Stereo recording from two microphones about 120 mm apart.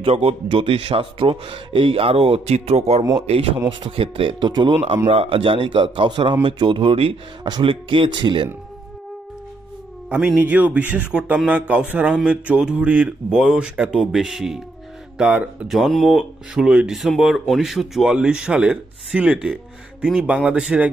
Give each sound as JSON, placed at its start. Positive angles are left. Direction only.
{"t": 0.0, "sound": "a man's voice", "side_deg": -50}
{"t": 3.2, "sound": "a man's voice", "side_deg": -50}
{"t": 4.7, "sound": "a man's voice", "side_deg": -55}
{"t": 10.0, "sound": "speech", "side_deg": -10}
{"t": 15.7, "sound": "speech", "side_deg": 0}